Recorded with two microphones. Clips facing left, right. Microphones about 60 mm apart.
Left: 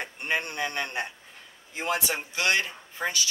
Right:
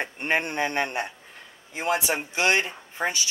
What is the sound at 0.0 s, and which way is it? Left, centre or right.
Speech, right.